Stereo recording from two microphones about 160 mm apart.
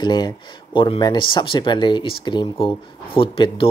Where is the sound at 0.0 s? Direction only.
25° left (ahead or behind).